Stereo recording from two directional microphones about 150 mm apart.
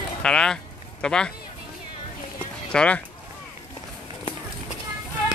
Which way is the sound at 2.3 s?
10° left (ahead or behind).